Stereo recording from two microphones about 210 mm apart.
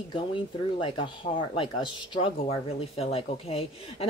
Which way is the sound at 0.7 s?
25° left (ahead or behind).